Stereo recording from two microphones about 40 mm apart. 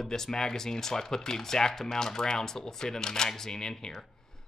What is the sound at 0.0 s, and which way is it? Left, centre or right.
Speech, centre.